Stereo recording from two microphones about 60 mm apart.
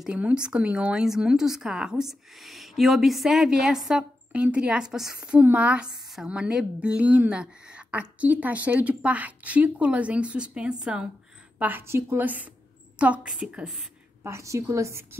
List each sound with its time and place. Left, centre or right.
0.2 s speech: centre
3.9 s speech: centre
5.4 s a woman's voice: right
11.5 s a sound: right
12.2 s a woman's voice: right
14.2 s a woman's voice: right